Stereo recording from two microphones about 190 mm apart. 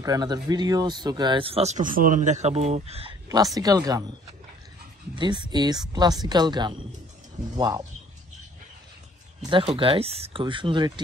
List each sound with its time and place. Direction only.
0.0 s speech: 20° right (ahead or behind)
3.5 s speech: 20° right (ahead or behind)
5.1 s speech: 25° right (ahead or behind)
9.5 s speech: 25° right (ahead or behind)